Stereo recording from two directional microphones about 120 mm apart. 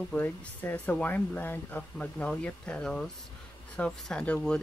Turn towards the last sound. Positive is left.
turn(degrees=5)  # may be behind; listen again after turning